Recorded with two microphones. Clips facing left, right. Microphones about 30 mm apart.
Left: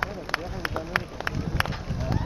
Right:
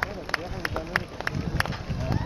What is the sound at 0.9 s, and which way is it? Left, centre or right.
Run, centre.